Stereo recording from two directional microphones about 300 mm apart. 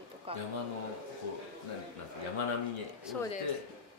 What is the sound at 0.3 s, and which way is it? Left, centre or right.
Speech, centre.